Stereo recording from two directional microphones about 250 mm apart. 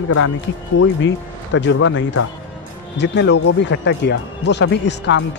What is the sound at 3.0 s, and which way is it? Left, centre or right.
Speech, left.